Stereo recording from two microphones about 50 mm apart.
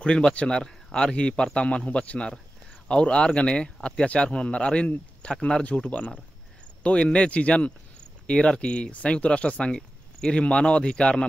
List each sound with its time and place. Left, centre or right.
0.0 s speech: centre
9.8 s a sound: centre
10.4 s speech: centre